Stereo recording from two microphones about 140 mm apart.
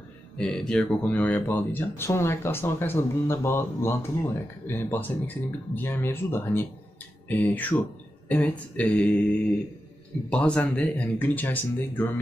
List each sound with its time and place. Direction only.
0.4 s speech: 5° left (ahead or behind)
10.3 s speech: 10° left (ahead or behind)